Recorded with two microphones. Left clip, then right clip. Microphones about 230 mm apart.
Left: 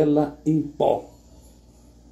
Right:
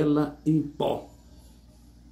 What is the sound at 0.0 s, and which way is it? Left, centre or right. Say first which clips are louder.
Speech: left 4 dB; centre.